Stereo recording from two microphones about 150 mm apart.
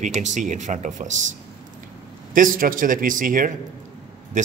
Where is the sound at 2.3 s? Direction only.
65° right (ahead or behind).